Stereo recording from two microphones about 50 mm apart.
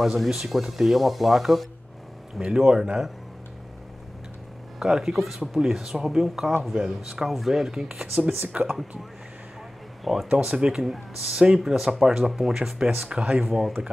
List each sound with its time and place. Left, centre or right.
0.0 s speech: centre
4.7 s speech: centre
8.5 s speech: right
10.1 s speech: centre
13.0 s speech: right
13.4 s speech: centre